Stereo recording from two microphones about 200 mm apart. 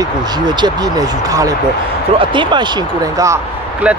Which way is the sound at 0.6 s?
15° right (ahead or behind).